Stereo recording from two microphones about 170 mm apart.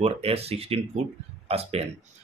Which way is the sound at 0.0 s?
35° right (ahead or behind).